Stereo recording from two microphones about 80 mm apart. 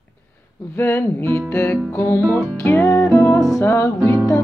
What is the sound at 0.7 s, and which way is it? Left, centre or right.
Music, left.